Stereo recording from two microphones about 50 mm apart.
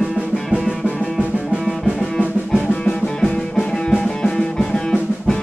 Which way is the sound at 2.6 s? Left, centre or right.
Left.